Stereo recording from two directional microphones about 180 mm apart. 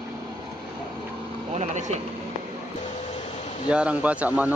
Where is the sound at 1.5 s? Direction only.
40° right (ahead or behind).